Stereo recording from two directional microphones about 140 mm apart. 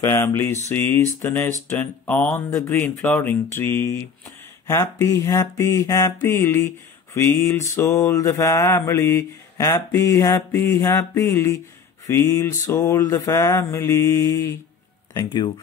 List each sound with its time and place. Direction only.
0.0 s mantra: 20° left (ahead or behind)
0.7 s speech: 15° left (ahead or behind)
4.6 s mantra: 20° left (ahead or behind)
15.1 s speech: 30° left (ahead or behind)